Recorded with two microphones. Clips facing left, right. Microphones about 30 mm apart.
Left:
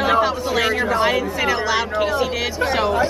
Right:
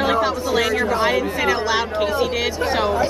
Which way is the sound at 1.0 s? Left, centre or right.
Centre.